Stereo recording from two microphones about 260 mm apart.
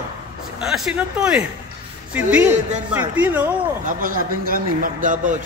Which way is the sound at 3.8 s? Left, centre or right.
Right.